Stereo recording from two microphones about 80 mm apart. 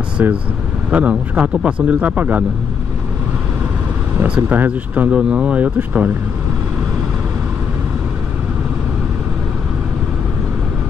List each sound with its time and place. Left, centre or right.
0.2 s speech: right
4.2 s speech: right